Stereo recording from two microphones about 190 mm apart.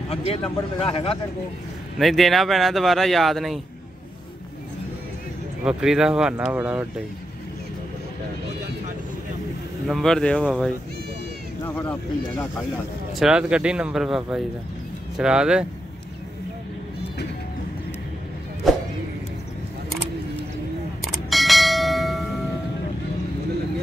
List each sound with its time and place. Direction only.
0.1 s speech: 35° left (ahead or behind)
2.0 s speech: centre (ahead or behind)
5.6 s speech: 5° right (ahead or behind)
9.8 s speech: centre (ahead or behind)
11.6 s speech: 5° left (ahead or behind)
13.1 s speech: 5° right (ahead or behind)
21.0 s a sound: centre (ahead or behind)